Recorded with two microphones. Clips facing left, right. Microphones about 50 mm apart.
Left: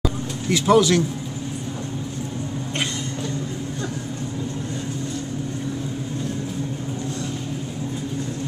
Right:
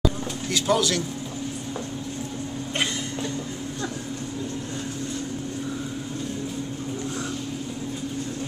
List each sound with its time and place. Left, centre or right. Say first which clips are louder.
0.5 s speech: left 7 dB; left